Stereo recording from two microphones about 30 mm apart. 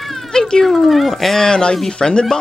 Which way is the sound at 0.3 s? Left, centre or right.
Left.